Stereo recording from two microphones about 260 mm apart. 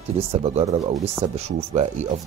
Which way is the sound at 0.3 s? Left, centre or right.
Right.